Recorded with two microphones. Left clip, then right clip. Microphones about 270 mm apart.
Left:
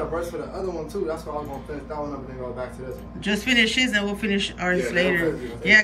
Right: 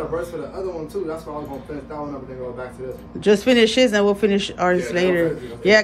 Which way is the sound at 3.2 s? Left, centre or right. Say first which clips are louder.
Right 6 dB; centre.